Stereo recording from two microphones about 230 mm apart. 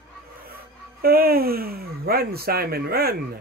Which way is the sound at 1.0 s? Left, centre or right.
Right.